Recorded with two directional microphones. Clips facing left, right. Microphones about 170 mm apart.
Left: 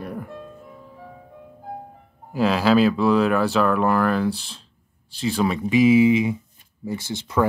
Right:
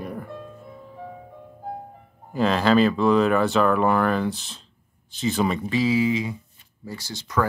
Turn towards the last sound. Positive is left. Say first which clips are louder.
# left 3 dB
turn(degrees=25)  # may be behind; listen again after turning